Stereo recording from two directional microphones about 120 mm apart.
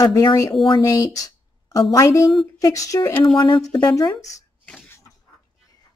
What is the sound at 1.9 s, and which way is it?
Speech, 25° left (ahead or behind).